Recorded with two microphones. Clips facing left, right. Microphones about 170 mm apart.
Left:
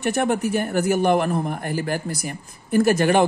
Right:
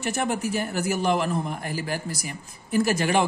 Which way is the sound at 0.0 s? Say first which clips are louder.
Left 5 dB; 55° left (ahead or behind).